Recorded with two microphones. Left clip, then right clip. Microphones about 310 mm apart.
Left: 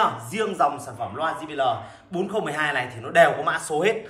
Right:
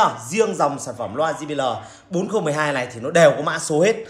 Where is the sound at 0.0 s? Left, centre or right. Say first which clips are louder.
Right 5 dB; centre.